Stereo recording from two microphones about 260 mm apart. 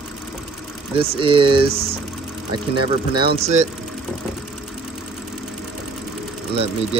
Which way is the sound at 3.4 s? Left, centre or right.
Right.